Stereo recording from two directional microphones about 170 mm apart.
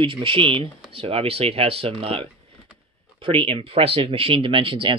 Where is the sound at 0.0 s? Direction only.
30° right (ahead or behind).